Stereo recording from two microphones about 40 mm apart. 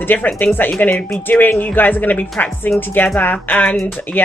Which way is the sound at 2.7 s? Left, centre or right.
Left.